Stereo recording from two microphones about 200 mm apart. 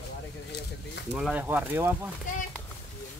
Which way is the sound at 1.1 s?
5° right (ahead or behind).